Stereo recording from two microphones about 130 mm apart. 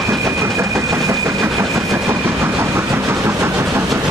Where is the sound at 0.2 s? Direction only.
20° right (ahead or behind).